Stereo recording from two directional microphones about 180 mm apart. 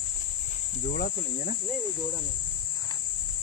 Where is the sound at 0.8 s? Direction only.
50° left (ahead or behind).